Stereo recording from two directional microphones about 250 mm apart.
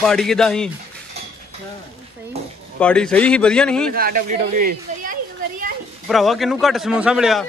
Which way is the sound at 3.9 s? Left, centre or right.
Right.